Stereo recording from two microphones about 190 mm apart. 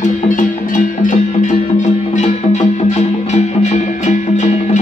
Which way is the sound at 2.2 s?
35° left (ahead or behind).